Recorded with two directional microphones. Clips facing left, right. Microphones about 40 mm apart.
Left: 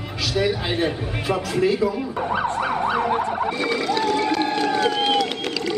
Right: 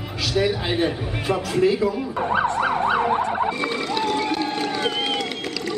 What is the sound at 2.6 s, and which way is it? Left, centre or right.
Emergency vehicle, centre.